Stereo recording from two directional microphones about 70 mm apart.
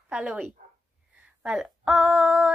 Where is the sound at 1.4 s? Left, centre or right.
Centre.